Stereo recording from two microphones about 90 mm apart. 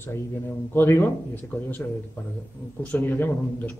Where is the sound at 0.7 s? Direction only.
25° left (ahead or behind).